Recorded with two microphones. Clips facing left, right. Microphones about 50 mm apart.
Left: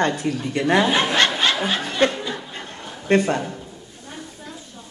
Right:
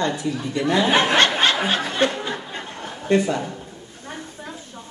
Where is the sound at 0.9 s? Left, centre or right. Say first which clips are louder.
Right 2 dB; right.